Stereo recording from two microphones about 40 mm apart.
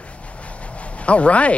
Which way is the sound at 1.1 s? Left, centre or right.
Left.